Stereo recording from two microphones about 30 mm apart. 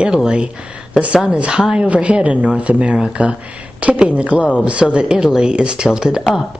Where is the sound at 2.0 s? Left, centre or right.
Right.